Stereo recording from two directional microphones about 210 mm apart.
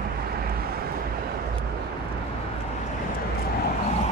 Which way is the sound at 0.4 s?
45° right (ahead or behind).